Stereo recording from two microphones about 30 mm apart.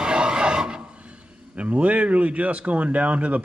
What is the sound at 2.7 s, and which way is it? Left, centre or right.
Speech, right.